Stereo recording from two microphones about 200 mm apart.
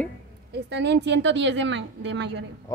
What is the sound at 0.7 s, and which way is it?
A woman's voice, 60° right (ahead or behind).